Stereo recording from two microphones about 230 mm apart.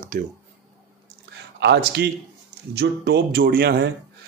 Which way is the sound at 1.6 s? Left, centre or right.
Right.